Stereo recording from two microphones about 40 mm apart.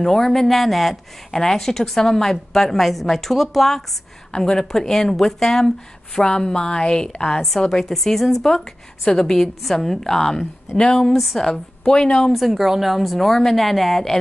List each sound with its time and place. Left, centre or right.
0.0 s a woman's voice: centre
7.3 s a woman's voice: centre
12.3 s a woman's voice: centre